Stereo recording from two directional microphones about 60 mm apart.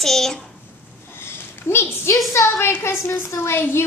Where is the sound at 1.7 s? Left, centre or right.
Left.